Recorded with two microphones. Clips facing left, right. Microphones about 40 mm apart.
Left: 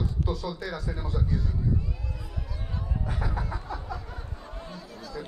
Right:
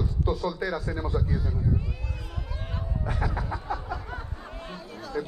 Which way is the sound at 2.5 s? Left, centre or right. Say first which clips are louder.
Right 2 dB; right.